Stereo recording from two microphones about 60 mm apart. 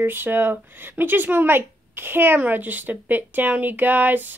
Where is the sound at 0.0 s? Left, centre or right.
Right.